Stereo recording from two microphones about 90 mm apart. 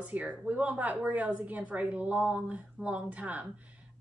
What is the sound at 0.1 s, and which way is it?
A woman's voice, 15° right (ahead or behind).